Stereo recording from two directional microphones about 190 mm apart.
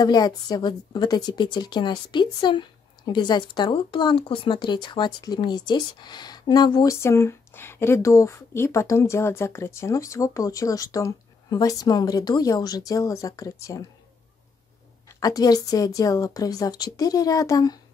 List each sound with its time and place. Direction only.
0.0 s a woman's voice: 20° left (ahead or behind)
15.0 s a woman's voice: 20° left (ahead or behind)